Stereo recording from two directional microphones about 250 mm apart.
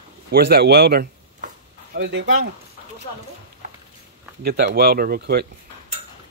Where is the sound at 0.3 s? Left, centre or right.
Right.